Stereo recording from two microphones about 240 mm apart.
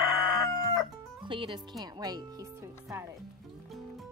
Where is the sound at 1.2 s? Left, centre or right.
Right.